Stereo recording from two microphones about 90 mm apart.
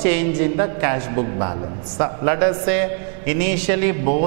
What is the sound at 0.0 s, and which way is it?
A man's voice, 10° right (ahead or behind).